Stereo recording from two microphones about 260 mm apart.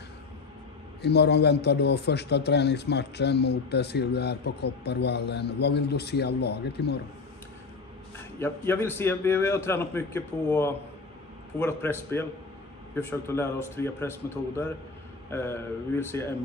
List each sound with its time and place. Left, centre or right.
1.0 s a man's voice: left
8.4 s a man's voice: centre